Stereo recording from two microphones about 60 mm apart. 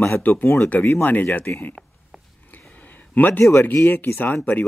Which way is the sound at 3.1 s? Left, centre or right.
Left.